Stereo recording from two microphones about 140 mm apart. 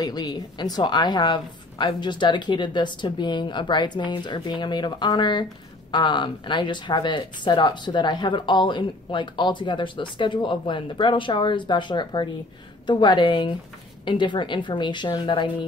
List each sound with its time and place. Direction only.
0.0 s a woman's voice: 30° left (ahead or behind)